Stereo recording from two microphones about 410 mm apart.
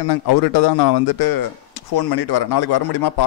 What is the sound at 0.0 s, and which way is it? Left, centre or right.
A man's voice, left.